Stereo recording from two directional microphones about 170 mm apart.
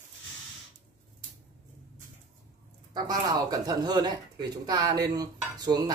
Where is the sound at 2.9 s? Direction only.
25° right (ahead or behind).